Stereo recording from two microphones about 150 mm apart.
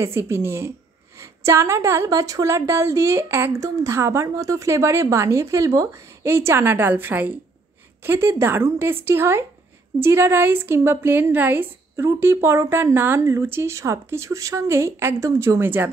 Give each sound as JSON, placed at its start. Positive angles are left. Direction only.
{"t": 0.0, "sound": "a woman's voice", "side_deg": -20}